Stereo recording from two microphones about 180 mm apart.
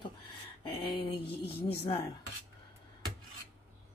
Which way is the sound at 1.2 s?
65° left (ahead or behind).